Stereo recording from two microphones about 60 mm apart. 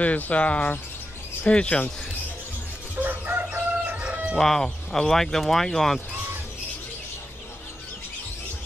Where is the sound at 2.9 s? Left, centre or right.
Right.